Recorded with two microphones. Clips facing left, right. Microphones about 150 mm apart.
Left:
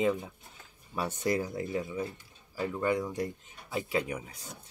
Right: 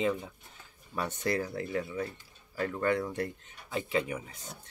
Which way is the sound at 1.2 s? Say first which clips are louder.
Left 2 dB; 15° left (ahead or behind).